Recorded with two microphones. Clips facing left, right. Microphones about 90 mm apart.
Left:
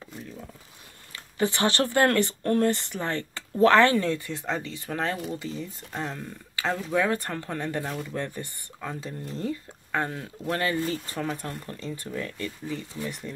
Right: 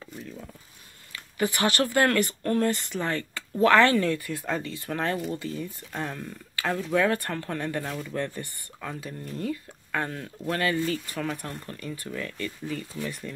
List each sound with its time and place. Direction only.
1.1 s speech: 25° left (ahead or behind)